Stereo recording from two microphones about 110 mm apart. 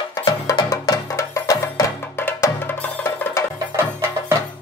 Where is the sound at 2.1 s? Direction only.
20° left (ahead or behind).